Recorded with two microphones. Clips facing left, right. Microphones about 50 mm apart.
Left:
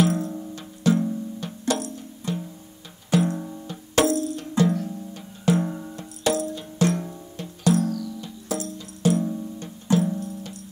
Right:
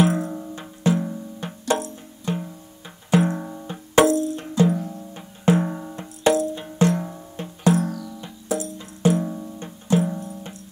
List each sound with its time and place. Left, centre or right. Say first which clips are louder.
0.0 s music: right 2 dB; right